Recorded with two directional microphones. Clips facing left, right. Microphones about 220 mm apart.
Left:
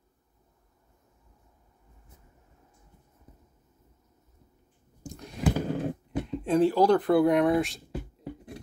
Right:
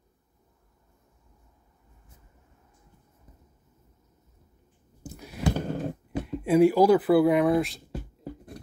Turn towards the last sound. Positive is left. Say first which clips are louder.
# right 1 dB
turn(degrees=0)  # may be behind; listen again after turning